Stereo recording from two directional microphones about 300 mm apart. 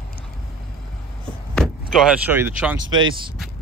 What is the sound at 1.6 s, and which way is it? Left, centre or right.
Speech, centre.